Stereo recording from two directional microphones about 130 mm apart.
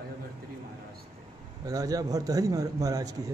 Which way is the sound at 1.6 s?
30° right (ahead or behind).